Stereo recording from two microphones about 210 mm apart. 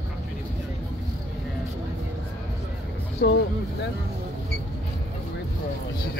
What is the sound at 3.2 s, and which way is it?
Speech, 55° left (ahead or behind).